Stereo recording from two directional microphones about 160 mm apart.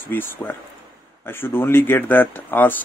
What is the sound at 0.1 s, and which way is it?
Speech, 10° left (ahead or behind).